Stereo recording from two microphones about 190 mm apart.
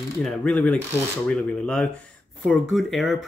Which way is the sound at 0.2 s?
5° left (ahead or behind).